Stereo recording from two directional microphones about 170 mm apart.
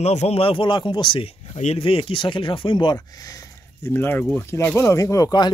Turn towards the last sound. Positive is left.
turn(degrees=25)  # may be behind; listen again after turning